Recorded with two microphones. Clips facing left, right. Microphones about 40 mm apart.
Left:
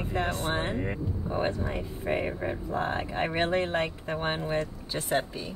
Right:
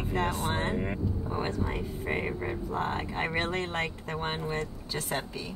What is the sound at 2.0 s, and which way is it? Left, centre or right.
Speech, centre.